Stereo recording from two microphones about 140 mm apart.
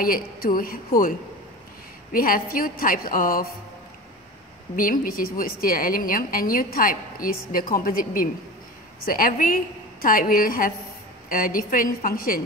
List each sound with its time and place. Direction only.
0.0 s a woman's voice: 90° left
2.1 s a woman's voice: 90° left
4.7 s a woman's voice: 85° left